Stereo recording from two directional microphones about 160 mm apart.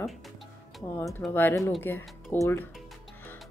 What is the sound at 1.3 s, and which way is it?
Speech, 15° left (ahead or behind).